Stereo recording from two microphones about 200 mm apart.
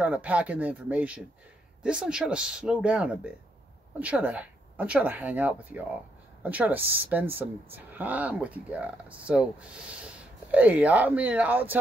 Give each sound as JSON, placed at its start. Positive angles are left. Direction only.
{"t": 0.0, "sound": "speech", "side_deg": -5}